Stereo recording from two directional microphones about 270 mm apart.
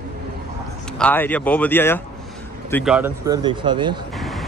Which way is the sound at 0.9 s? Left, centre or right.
Centre.